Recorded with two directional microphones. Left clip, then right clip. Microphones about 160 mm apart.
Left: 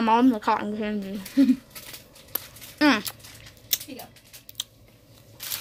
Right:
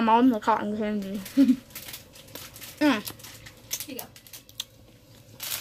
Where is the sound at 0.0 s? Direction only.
10° left (ahead or behind).